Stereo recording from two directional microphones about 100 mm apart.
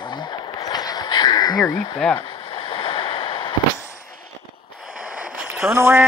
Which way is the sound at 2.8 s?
60° left (ahead or behind).